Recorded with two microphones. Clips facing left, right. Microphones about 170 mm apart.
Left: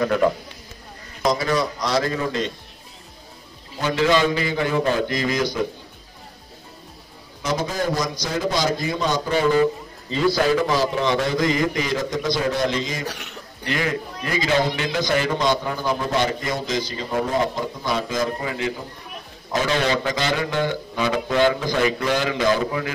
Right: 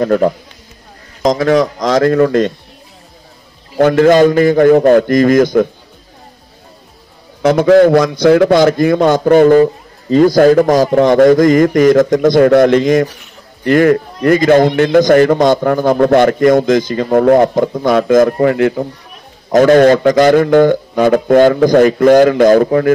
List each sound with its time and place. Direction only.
0.0 s speech: 40° right (ahead or behind)
1.2 s speech: 90° right
2.0 s a man's voice: 60° right (ahead or behind)
3.7 s a man's voice: 55° right (ahead or behind)
7.4 s a man's voice: 65° right (ahead or behind)
19.5 s a man's voice: 50° right (ahead or behind)